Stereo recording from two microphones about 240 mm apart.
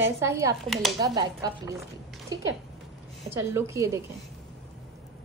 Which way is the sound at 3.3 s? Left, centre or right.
Centre.